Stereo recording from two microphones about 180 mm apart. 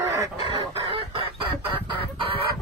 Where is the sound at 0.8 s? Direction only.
30° right (ahead or behind).